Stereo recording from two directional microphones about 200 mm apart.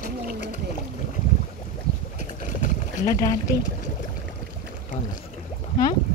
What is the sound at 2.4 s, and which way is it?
Boat, 40° left (ahead or behind).